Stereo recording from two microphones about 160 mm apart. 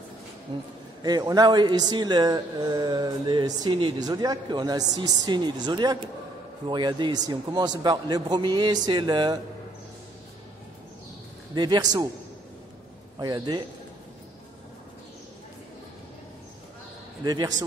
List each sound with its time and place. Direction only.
1.0 s a man's voice: 25° right (ahead or behind)
11.5 s a man's voice: 25° right (ahead or behind)
13.2 s a man's voice: 25° right (ahead or behind)
17.2 s a man's voice: 25° right (ahead or behind)